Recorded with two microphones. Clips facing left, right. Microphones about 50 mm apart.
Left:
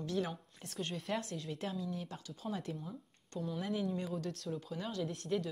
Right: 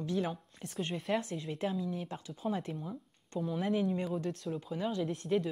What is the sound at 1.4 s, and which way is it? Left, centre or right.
Speech, right.